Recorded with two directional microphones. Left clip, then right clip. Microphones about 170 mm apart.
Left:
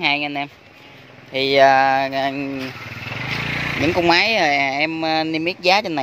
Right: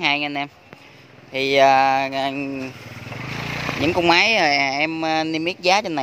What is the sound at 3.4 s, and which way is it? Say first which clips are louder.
Vehicle: left 1 dB; 30° right (ahead or behind).